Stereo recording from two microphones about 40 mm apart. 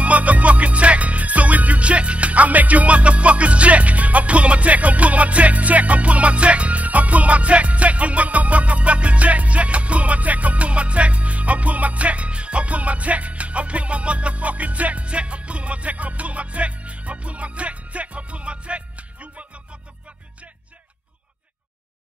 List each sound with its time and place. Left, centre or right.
0.0 s music: right